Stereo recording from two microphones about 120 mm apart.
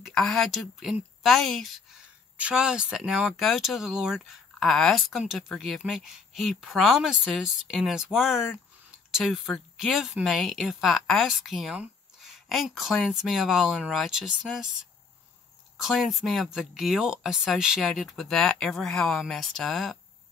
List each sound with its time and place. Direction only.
0.0 s speech: 5° left (ahead or behind)
2.3 s speech: 10° right (ahead or behind)
15.8 s speech: centre (ahead or behind)